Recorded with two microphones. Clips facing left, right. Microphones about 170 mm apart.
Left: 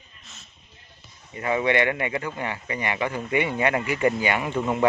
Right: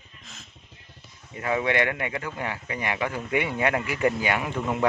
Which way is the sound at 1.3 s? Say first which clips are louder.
Left 2 dB; centre (ahead or behind).